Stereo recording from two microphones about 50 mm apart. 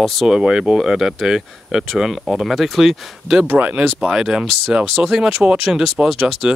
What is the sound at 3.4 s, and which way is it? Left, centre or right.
Speech, right.